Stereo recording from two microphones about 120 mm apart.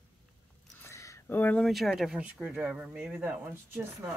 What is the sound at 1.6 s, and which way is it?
Speech, centre (ahead or behind).